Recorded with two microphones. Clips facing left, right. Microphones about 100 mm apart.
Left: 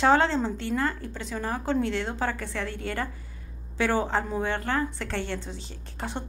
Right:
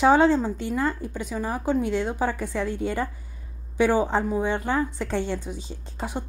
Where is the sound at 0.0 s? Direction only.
15° right (ahead or behind).